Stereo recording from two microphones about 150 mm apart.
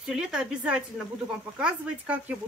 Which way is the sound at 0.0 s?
5° right (ahead or behind).